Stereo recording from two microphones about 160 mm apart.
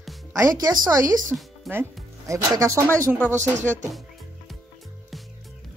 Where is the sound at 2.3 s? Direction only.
20° right (ahead or behind).